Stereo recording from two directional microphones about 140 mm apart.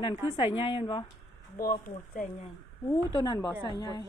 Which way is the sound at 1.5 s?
90° left.